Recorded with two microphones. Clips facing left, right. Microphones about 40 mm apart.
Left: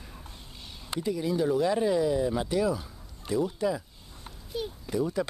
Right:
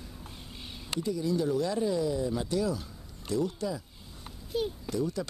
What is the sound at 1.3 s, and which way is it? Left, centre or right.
Speech, centre.